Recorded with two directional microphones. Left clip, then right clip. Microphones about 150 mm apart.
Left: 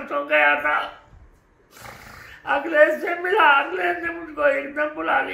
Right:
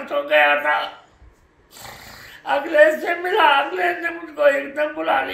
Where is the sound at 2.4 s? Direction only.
Centre (ahead or behind).